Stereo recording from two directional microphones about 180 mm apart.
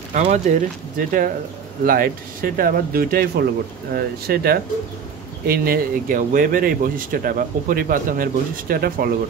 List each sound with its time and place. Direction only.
0.1 s speech: 40° right (ahead or behind)